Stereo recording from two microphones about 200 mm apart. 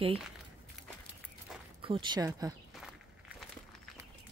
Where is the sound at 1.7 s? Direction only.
25° right (ahead or behind).